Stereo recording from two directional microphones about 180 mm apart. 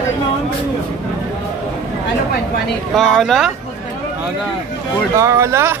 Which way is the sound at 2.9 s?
Centre (ahead or behind).